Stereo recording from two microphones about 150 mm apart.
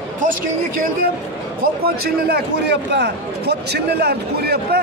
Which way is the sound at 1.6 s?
90° right.